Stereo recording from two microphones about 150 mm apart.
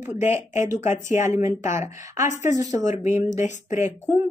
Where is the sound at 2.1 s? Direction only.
55° left (ahead or behind).